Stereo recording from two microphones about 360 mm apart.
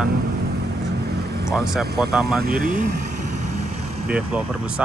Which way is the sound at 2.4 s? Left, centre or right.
Right.